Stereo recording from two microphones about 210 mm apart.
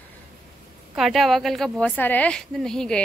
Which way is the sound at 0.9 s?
Centre (ahead or behind).